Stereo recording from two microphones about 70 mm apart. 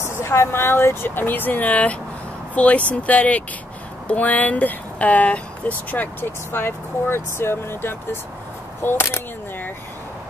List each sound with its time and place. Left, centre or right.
0.1 s speech: left